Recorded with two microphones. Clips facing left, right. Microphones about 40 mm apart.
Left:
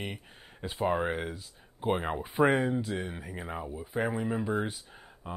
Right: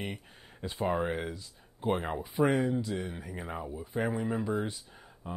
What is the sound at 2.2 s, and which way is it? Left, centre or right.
Speech, left.